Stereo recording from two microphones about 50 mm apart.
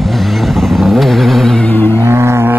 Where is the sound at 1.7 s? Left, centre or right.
Left.